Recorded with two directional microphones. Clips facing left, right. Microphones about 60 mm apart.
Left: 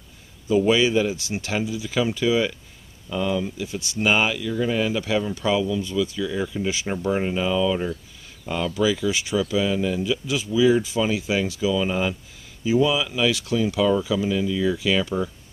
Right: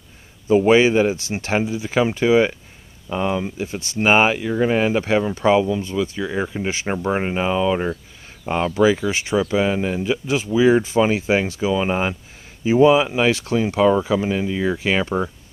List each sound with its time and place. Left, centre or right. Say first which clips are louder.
0.5 s speech: right 5 dB; right